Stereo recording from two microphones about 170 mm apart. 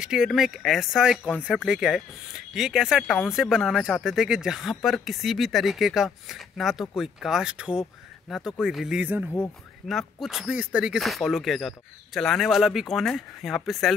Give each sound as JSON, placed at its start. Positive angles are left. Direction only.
{"t": 0.0, "sound": "speech", "side_deg": 0}